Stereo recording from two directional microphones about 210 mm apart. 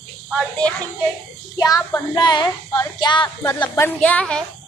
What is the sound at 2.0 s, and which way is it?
Speech, 20° left (ahead or behind).